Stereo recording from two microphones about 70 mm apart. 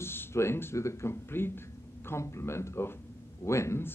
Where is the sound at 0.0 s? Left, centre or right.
Left.